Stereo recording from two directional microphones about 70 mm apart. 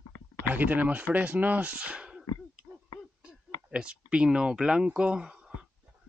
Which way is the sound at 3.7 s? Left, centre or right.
Centre.